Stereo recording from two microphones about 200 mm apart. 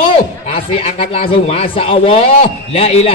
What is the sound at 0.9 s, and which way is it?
A man's voice, 30° left (ahead or behind).